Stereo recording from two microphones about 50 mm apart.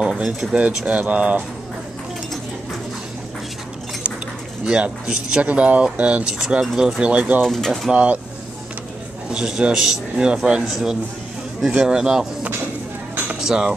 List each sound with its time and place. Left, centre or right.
0.4 s speech: centre
0.8 s speech: right
4.6 s speech: centre
5.4 s speech: right; by 7.0 s centre
7.0 s speech: right
7.4 s speech: centre
7.9 s speech: right
9.3 s speech: centre
13.4 s speech: centre